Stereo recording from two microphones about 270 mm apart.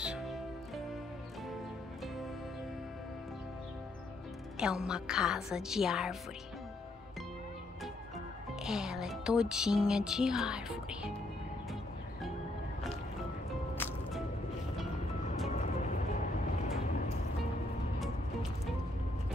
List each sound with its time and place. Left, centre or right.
0.0 s music: centre
4.6 s a woman's voice: centre
8.6 s music: centre
15.2 s music: left